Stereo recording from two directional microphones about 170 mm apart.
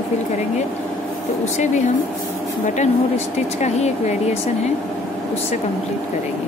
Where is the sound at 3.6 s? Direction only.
40° left (ahead or behind).